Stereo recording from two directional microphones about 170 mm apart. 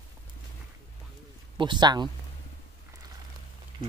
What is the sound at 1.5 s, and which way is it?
Speech, 25° right (ahead or behind).